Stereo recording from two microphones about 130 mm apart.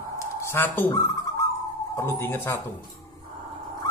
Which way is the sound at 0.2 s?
20° left (ahead or behind).